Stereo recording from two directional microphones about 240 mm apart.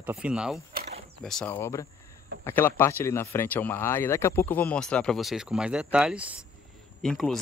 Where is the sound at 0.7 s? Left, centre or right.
Right.